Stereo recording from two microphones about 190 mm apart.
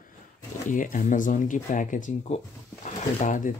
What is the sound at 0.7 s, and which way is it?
Speech, 45° left (ahead or behind).